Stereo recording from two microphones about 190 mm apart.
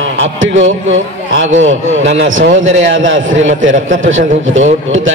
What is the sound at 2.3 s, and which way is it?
A man's voice, 90° right.